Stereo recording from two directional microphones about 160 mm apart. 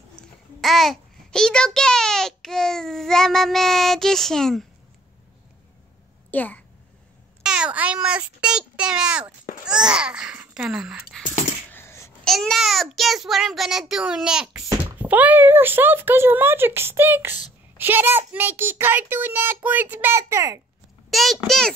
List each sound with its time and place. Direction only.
0.1 s a child's voice: centre (ahead or behind)
6.3 s a child's voice: 10° left (ahead or behind)
7.4 s a child's voice: 5° right (ahead or behind)
11.7 s babbling: 15° left (ahead or behind)
12.3 s a child's voice: centre (ahead or behind); by 20.6 s 20° right (ahead or behind)
21.1 s a sound: centre (ahead or behind)
21.5 s a child's voice: 5° left (ahead or behind)